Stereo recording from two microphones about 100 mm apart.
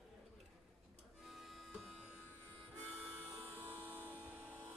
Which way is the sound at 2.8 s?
15° right (ahead or behind).